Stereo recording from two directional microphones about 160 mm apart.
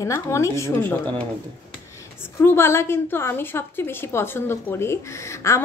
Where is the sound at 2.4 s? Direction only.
15° left (ahead or behind).